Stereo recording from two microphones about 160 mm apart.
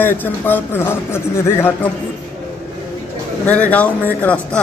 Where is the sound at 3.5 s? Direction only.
10° left (ahead or behind).